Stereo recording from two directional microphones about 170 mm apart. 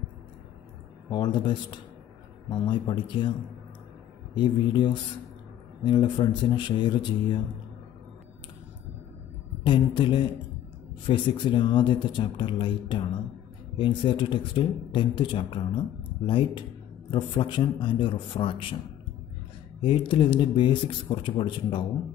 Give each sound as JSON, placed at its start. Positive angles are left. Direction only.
{"t": 1.1, "sound": "speech", "side_deg": 25}
{"t": 4.4, "sound": "speech", "side_deg": 30}
{"t": 9.6, "sound": "speech", "side_deg": 30}
{"t": 19.8, "sound": "speech", "side_deg": 30}